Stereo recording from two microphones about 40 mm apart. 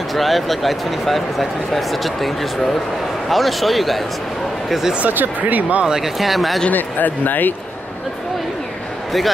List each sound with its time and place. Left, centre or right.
0.1 s speech: centre
5.0 s speech: right
5.9 s speech: centre
6.1 s speech: centre
6.7 s speech: left